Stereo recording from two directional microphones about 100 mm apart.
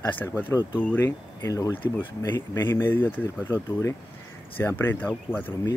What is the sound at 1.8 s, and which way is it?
Speech, 35° left (ahead or behind).